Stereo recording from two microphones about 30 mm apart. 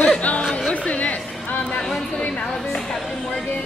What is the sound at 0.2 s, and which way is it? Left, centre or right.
Music, left.